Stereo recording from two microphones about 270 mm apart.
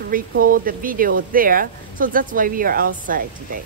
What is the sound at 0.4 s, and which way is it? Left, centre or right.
Speech, right.